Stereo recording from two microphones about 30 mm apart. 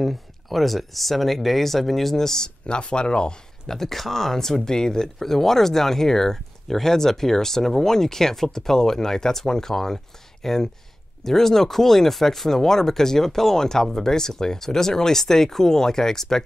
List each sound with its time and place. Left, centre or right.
0.0 s speech: centre
2.2 s speech: left
2.6 s speech: left
3.6 s speech: centre
5.2 s speech: centre